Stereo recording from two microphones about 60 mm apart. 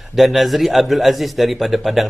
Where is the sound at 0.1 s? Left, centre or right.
Centre.